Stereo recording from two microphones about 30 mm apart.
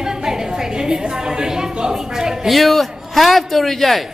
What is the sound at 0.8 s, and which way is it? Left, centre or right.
A woman's voice, right.